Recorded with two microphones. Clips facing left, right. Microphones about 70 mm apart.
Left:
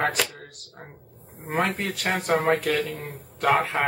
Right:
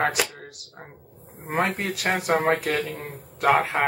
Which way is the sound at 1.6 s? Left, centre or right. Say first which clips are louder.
Right 1 dB; centre.